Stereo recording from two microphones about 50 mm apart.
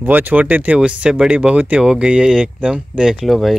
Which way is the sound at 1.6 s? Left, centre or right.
Right.